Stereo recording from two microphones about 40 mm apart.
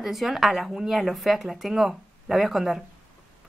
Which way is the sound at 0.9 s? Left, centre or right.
Centre.